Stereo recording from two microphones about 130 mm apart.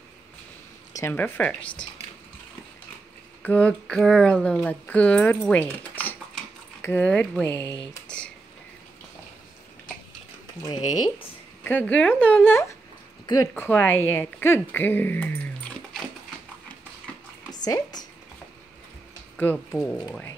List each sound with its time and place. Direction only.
1.1 s speech: 15° left (ahead or behind)
3.4 s speech: 10° left (ahead or behind)
8.1 s a sound: 5° left (ahead or behind)
10.7 s speech: 30° left (ahead or behind)
11.6 s speech: 15° left (ahead or behind)
17.5 s a sound: 30° left (ahead or behind)
19.7 s speech: 15° left (ahead or behind)